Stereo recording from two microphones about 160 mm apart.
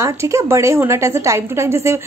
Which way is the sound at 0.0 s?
20° right (ahead or behind).